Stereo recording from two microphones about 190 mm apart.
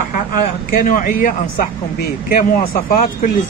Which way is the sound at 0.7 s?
45° left (ahead or behind).